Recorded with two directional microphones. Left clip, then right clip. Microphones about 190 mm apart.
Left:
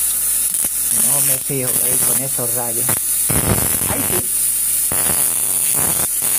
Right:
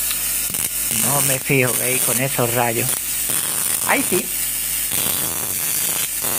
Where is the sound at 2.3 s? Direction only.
20° right (ahead or behind).